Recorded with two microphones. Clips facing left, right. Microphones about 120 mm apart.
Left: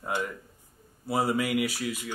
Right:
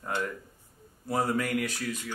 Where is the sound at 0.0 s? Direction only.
10° left (ahead or behind).